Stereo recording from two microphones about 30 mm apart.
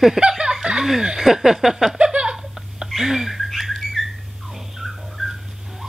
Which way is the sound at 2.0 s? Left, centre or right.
Right.